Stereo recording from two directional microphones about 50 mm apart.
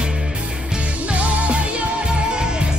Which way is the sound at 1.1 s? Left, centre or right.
Right.